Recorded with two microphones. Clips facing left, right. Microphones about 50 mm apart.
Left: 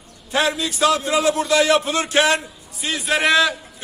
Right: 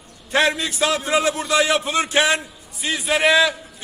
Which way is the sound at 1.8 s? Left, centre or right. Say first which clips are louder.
Left 1 dB; centre.